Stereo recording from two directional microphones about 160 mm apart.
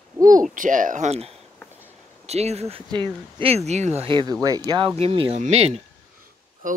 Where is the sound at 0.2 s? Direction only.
55° right (ahead or behind).